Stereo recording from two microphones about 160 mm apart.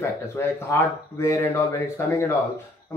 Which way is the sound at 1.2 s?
20° left (ahead or behind).